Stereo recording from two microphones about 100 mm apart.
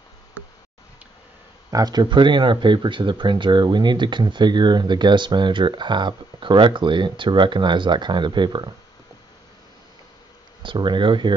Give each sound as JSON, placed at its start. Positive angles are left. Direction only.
{"t": 1.7, "sound": "speech", "side_deg": -40}
{"t": 10.6, "sound": "speech", "side_deg": -50}